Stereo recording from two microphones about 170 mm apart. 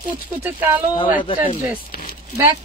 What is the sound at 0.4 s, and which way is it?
Speech, 10° right (ahead or behind).